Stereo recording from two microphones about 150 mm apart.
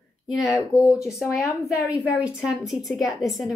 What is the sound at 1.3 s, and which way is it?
Speech, 20° left (ahead or behind).